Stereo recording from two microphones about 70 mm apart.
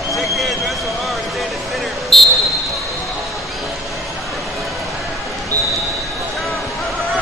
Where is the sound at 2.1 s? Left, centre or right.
Centre.